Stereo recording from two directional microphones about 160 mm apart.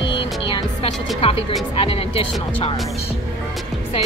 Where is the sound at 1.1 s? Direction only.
35° left (ahead or behind).